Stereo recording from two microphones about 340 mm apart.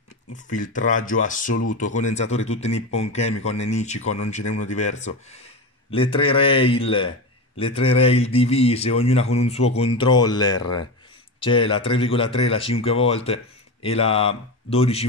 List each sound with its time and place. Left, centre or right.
0.5 s a man's voice: left